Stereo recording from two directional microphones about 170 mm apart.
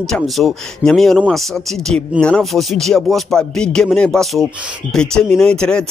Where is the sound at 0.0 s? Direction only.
Centre (ahead or behind).